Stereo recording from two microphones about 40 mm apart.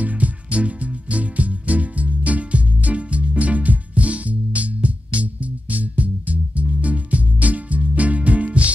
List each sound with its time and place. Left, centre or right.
0.0 s music: right